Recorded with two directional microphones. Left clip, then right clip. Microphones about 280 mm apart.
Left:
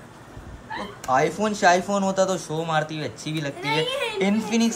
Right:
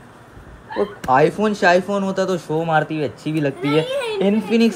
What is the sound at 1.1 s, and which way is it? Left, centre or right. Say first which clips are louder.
Speech: right 5 dB; centre.